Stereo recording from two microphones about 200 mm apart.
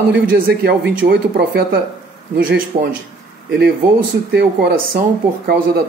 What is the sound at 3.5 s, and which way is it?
Speech, 55° right (ahead or behind).